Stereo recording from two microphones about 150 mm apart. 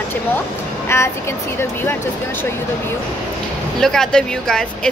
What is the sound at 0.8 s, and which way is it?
Speech, 15° left (ahead or behind).